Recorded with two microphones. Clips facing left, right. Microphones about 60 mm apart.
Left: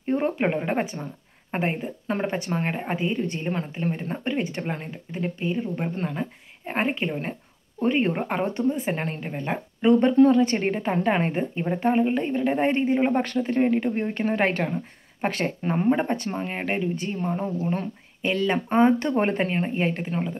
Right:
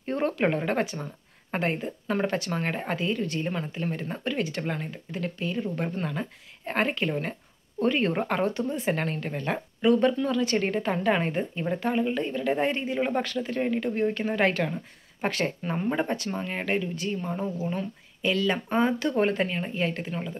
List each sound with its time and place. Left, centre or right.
0.0 s a woman's voice: centre
8.0 s a woman's voice: centre
9.8 s a woman's voice: left